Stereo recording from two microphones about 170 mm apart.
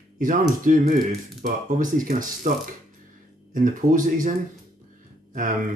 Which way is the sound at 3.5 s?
50° right (ahead or behind).